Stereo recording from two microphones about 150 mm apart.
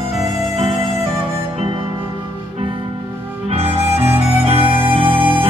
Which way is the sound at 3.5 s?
35° right (ahead or behind).